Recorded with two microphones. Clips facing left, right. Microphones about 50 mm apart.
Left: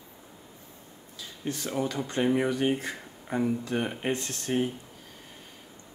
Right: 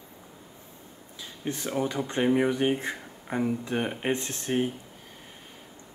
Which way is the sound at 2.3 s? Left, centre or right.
Centre.